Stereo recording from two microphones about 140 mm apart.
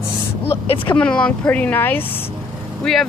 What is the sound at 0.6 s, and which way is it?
Speech, 40° left (ahead or behind).